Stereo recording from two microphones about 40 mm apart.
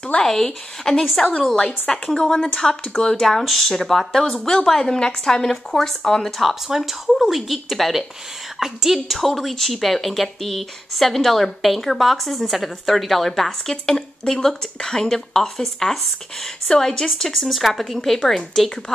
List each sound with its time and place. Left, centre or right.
0.2 s a woman's voice: centre
6.4 s a woman's voice: centre
8.9 s a woman's voice: centre
17.4 s a woman's voice: centre